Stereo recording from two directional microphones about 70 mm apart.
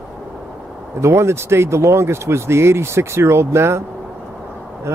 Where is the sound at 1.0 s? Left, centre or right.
Right.